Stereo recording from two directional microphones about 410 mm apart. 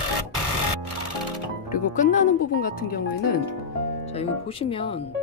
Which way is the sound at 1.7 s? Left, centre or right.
Centre.